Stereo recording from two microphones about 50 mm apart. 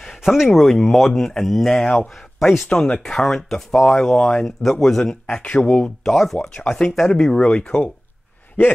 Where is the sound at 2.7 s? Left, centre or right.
Centre.